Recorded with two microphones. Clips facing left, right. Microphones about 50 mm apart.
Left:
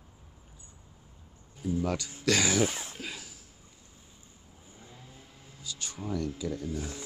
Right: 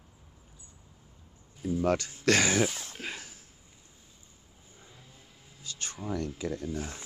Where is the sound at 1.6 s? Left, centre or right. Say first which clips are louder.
Even; centre.